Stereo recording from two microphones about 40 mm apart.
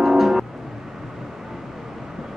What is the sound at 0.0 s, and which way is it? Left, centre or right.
Music, centre.